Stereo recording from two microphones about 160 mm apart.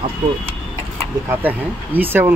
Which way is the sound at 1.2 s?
10° right (ahead or behind).